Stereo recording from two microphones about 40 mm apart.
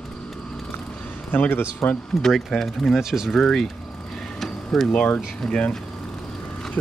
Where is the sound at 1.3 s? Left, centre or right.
Left.